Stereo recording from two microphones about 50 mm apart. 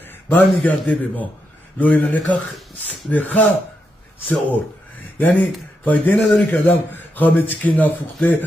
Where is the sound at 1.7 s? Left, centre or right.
Left.